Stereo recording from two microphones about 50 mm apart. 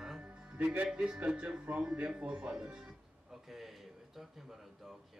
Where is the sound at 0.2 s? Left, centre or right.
Right.